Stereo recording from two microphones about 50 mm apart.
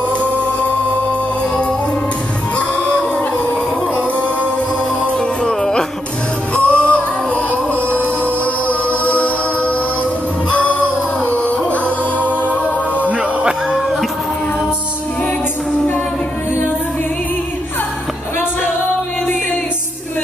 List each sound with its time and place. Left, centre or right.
2.7 s music: left
5.0 s music: centre
6.5 s music: left
8.6 s music: left
13.1 s music: centre